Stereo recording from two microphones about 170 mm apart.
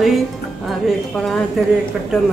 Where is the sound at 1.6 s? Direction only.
Centre (ahead or behind).